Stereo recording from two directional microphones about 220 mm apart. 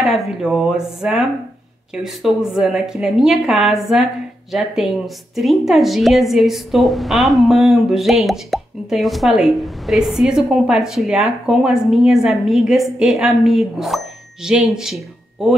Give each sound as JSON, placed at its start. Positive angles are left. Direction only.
{"t": 0.0, "sound": "a woman's voice", "side_deg": 0}